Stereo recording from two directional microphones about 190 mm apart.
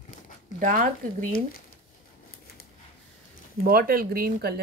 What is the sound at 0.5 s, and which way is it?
Speech, 45° right (ahead or behind).